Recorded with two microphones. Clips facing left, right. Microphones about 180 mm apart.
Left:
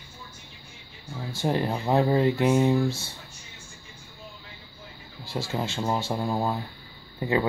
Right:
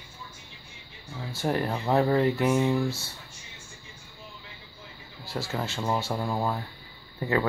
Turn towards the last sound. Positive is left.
turn(degrees=20)  # may be behind; listen again after turning